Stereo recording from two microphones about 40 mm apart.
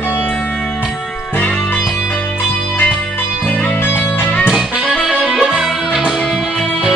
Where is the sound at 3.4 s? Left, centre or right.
Left.